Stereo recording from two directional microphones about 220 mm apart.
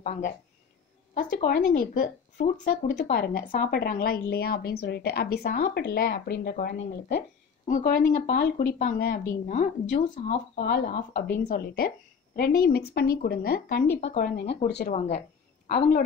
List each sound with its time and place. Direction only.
0.0 s a woman's voice: 35° left (ahead or behind)
2.3 s a woman's voice: 35° left (ahead or behind)
15.0 s a sound: 30° left (ahead or behind)